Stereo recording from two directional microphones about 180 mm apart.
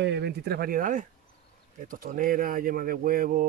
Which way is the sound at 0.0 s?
70° right (ahead or behind).